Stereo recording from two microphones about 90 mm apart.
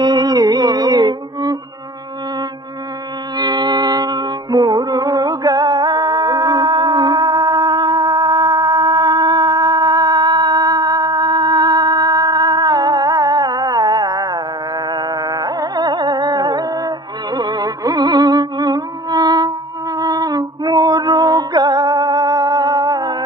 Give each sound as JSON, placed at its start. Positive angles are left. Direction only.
{"t": 0.0, "sound": "music", "side_deg": -50}
{"t": 3.3, "sound": "music", "side_deg": -50}
{"t": 14.9, "sound": "carnatic music", "side_deg": -50}
{"t": 20.0, "sound": "a sound", "side_deg": -45}